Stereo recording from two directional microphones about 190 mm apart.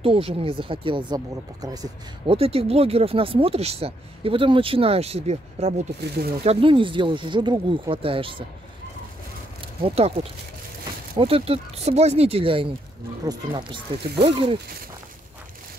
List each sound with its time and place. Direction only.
0.0 s speech: 30° right (ahead or behind)
2.3 s speech: 30° right (ahead or behind)
9.6 s speech: 30° right (ahead or behind)